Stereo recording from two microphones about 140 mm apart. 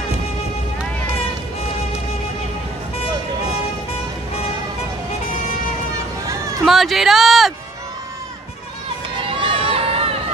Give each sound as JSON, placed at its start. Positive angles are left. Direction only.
{"t": 6.2, "sound": "music", "side_deg": -25}
{"t": 6.6, "sound": "music", "side_deg": 0}
{"t": 9.2, "sound": "crowd", "side_deg": -40}